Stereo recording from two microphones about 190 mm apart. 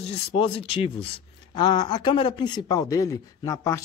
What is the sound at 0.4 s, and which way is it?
Speech, 30° left (ahead or behind).